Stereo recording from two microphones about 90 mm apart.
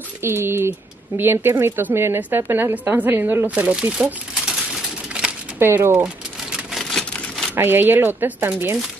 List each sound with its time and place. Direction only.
0.2 s speech: 25° right (ahead or behind); by 5.3 s 5° right (ahead or behind)
5.6 s speech: 25° right (ahead or behind)
6.8 s a sound: 5° left (ahead or behind)
7.5 s speech: 25° right (ahead or behind)